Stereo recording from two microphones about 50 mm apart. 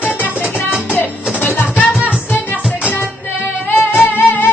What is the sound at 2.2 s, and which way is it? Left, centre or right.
Music, left.